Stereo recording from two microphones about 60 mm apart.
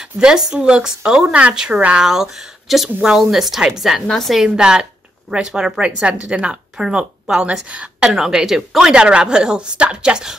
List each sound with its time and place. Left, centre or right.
0.0 s a woman's voice: centre
4.4 s a woman's voice: centre
7.6 s speech: right